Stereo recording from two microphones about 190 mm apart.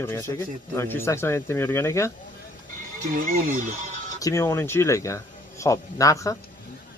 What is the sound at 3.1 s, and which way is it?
Speech, 45° right (ahead or behind).